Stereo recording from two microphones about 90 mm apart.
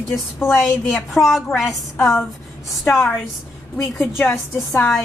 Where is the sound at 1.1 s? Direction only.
Centre (ahead or behind).